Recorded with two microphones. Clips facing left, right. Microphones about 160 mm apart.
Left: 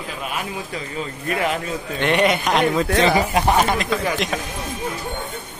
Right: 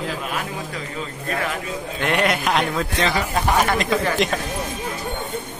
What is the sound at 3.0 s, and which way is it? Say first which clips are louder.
Speech: left 4 dB; 20° left (ahead or behind).